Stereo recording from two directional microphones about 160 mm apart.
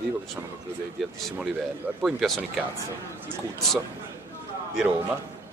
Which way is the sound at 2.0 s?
Centre (ahead or behind).